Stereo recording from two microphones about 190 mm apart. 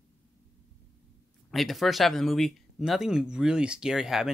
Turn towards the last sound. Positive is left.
turn(degrees=0)  # may be behind; listen again after turning